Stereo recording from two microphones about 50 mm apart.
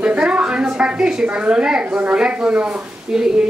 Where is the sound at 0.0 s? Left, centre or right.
Right.